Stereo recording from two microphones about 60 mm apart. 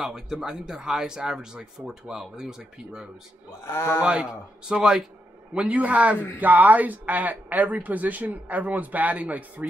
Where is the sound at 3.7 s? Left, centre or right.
Left.